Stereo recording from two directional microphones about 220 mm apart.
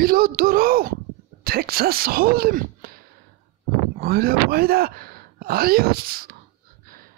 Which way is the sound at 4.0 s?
45° right (ahead or behind).